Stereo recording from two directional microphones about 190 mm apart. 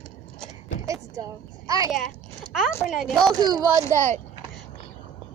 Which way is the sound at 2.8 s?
Centre (ahead or behind).